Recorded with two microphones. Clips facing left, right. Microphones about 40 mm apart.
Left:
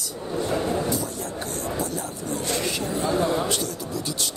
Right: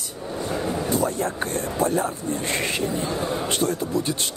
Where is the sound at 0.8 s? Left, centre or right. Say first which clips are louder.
Right 5 dB; right.